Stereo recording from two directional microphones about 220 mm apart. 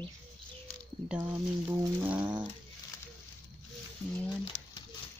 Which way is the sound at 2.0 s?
5° right (ahead or behind).